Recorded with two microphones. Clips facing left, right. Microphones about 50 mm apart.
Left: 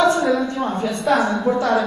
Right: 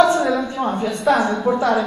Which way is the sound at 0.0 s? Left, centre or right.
Centre.